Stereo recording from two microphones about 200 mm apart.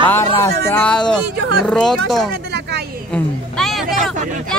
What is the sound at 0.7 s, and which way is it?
Speech, 5° left (ahead or behind).